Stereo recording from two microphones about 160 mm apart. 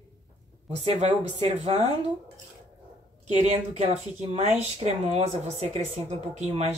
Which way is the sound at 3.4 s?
40° right (ahead or behind).